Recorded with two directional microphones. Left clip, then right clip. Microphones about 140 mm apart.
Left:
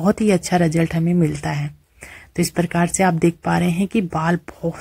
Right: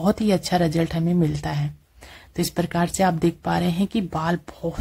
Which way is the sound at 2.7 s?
15° left (ahead or behind).